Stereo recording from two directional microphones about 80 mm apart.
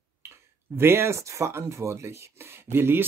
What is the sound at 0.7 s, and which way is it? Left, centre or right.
Speech, right.